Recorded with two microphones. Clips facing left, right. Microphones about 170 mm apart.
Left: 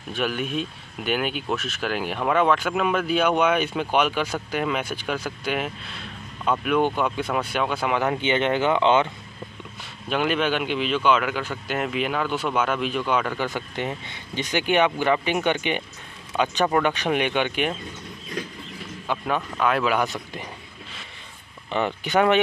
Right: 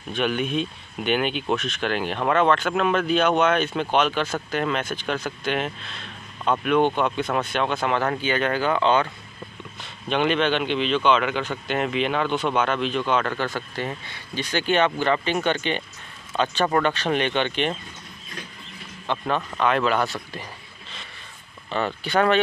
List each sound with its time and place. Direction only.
0.1 s speech: 5° left (ahead or behind); by 9.1 s 20° left (ahead or behind)
10.0 s speech: 5° left (ahead or behind)
19.0 s speech: 5° left (ahead or behind)
21.6 s speech: 15° left (ahead or behind)